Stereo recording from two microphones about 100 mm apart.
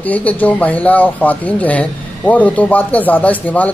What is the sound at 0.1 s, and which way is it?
Speech, 15° left (ahead or behind).